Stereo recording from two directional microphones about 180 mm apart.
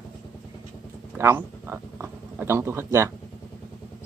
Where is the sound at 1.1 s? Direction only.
15° right (ahead or behind).